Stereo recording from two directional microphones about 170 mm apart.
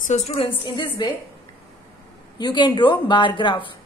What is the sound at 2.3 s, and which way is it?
Speech, 25° left (ahead or behind).